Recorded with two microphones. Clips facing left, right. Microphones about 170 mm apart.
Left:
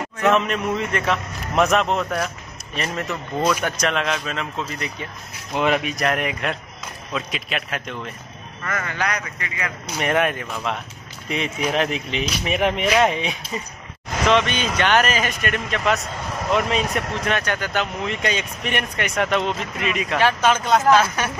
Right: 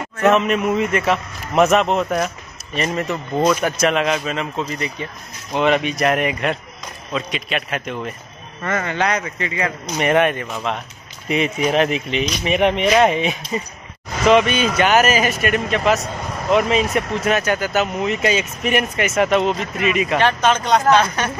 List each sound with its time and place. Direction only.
0.3 s speech: 5° right (ahead or behind)
8.6 s speech: 25° right (ahead or behind)
9.9 s speech: centre (ahead or behind)
20.2 s speech: 10° left (ahead or behind)